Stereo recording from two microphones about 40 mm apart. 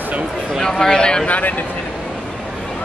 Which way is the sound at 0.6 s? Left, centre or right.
Centre.